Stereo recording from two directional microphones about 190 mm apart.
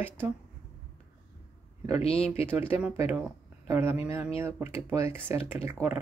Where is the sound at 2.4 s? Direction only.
10° right (ahead or behind).